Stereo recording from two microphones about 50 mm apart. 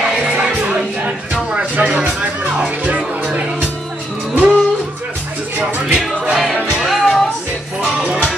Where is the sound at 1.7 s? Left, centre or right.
Right.